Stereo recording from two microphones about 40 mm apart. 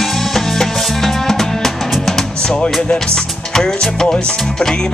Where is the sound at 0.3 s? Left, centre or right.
Centre.